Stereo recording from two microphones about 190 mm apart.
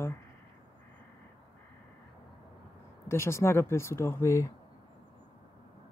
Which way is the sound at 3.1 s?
15° left (ahead or behind).